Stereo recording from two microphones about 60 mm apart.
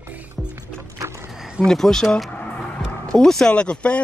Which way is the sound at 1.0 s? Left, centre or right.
Right.